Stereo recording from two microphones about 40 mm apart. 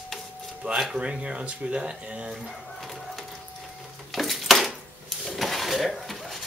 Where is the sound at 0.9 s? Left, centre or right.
Right.